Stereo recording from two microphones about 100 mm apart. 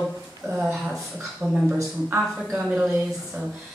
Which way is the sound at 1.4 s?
15° right (ahead or behind).